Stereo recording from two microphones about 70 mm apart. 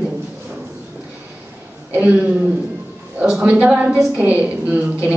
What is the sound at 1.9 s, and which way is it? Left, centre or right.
Speech, right.